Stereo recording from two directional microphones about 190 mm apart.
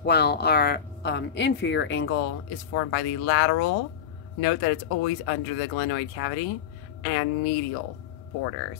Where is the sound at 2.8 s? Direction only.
90° left.